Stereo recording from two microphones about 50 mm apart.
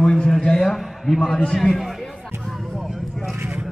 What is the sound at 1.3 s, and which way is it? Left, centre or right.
Speech, centre.